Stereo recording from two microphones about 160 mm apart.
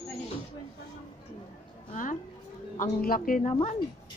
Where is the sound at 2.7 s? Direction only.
60° left (ahead or behind).